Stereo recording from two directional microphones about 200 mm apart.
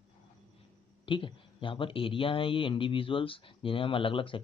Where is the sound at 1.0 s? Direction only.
25° left (ahead or behind).